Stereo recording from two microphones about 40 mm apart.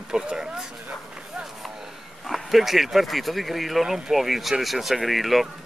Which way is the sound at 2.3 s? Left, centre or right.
Centre.